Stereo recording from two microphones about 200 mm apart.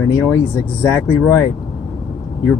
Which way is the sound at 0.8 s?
10° left (ahead or behind).